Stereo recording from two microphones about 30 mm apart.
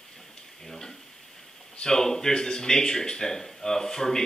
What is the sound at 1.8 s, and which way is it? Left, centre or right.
Speech, centre.